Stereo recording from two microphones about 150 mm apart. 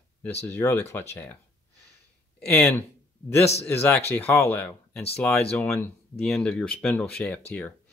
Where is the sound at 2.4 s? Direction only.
5° left (ahead or behind).